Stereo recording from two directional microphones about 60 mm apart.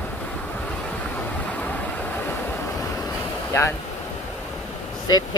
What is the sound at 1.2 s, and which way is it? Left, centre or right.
Waves, left.